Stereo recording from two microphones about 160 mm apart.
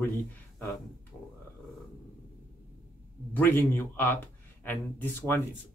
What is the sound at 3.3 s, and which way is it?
Speech, 10° left (ahead or behind).